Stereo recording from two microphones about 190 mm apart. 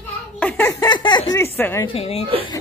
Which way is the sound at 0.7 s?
25° left (ahead or behind).